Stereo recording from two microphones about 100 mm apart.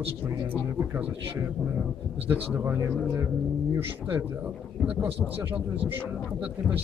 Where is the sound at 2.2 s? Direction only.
20° right (ahead or behind).